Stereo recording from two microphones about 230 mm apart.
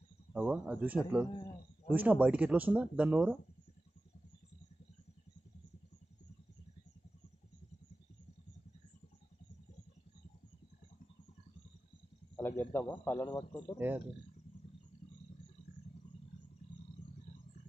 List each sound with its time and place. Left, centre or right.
0.3 s speech: centre
12.4 s a man's voice: centre